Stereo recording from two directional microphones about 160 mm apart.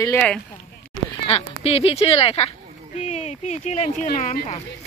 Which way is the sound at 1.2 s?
40° left (ahead or behind).